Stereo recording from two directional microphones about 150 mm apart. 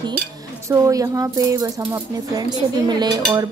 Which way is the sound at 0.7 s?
20° right (ahead or behind).